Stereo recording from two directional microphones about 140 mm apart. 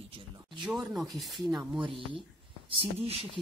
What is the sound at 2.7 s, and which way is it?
Speech, 45° right (ahead or behind).